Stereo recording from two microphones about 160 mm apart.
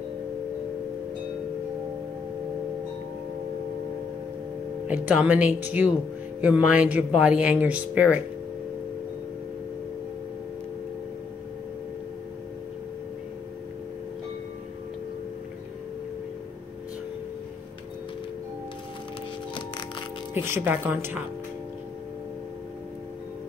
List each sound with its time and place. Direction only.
4.8 s speech: 10° right (ahead or behind)
20.3 s speech: 15° right (ahead or behind)